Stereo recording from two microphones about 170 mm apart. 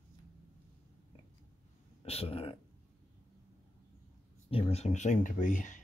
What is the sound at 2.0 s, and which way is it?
Speech, 35° left (ahead or behind).